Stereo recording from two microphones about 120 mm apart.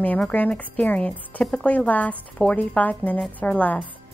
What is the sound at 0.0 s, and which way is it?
Speech, 15° left (ahead or behind).